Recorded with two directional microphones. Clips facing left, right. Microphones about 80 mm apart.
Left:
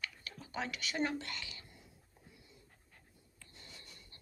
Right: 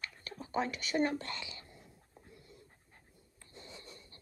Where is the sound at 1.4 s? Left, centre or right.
Right.